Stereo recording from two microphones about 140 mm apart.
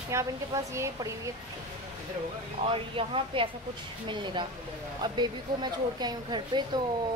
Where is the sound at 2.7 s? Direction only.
40° right (ahead or behind).